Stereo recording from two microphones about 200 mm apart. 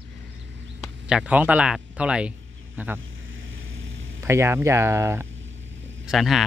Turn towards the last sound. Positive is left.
turn(degrees=0)  # may be behind; listen again after turning